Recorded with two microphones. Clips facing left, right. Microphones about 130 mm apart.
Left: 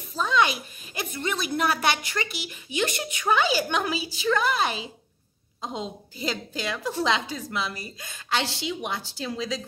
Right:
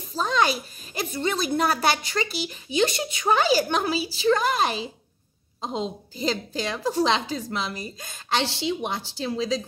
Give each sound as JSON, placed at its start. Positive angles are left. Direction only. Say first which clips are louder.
{"t": 0.1, "sound": "a woman's voice", "louder": "even", "side_deg": -35}
{"t": 5.6, "sound": "a woman's voice", "louder": "right 4 dB", "side_deg": -30}